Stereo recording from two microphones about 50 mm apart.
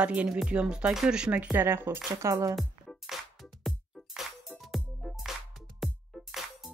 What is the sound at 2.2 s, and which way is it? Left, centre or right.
Speech, right.